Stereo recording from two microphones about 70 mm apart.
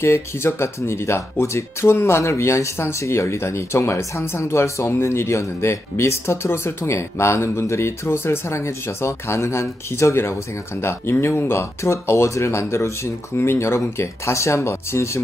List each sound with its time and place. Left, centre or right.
0.0 s speech: left